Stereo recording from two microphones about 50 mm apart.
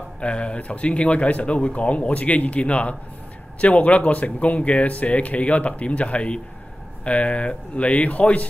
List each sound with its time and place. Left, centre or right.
0.2 s speech: left